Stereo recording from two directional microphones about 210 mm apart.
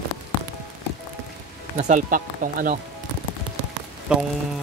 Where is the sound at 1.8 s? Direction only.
40° right (ahead or behind).